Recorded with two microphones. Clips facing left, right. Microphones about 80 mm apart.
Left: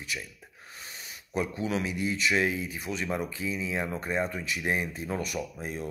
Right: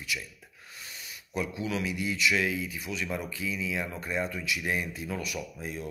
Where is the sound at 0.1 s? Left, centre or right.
Left.